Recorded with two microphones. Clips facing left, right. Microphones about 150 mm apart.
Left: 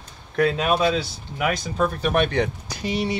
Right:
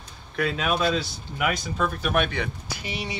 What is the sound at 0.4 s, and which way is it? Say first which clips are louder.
Speech: left 5 dB; 40° left (ahead or behind).